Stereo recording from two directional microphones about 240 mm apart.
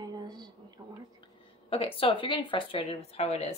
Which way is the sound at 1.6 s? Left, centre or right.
Left.